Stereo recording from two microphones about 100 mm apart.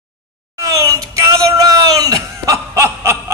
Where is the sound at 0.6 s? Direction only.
35° right (ahead or behind).